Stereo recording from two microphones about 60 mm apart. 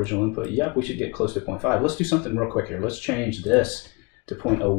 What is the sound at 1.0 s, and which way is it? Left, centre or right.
Speech, centre.